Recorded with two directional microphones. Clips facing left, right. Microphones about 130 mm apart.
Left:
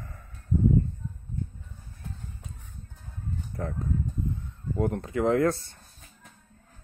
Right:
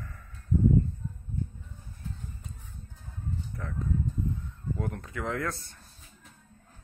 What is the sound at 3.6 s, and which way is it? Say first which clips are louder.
Speech: left 11 dB; 40° left (ahead or behind).